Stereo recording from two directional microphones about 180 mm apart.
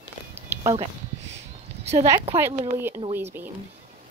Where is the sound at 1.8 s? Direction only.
35° right (ahead or behind).